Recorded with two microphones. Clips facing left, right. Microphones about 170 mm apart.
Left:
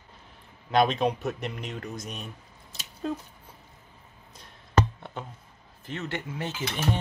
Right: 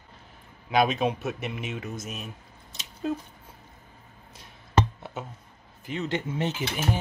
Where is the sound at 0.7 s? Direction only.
5° right (ahead or behind).